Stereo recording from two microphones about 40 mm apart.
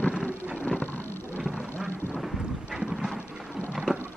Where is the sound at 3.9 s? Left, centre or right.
Right.